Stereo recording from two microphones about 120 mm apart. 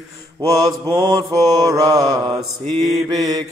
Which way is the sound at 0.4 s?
35° right (ahead or behind).